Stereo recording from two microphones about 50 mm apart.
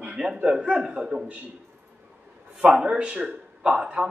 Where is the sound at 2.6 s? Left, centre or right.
Centre.